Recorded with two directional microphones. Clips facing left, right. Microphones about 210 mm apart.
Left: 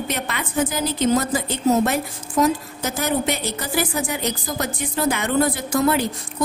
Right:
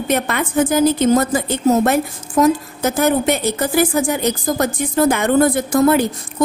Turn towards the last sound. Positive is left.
turn(degrees=-45)  # may be behind; listen again after turning